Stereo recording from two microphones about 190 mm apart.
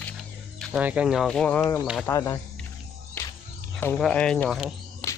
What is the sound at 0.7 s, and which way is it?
Speech, 5° right (ahead or behind).